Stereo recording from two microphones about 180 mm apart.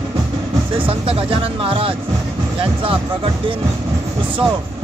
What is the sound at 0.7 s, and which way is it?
Speech, 30° right (ahead or behind).